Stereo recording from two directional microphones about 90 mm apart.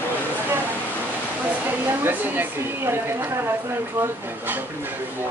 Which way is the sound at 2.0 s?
25° right (ahead or behind).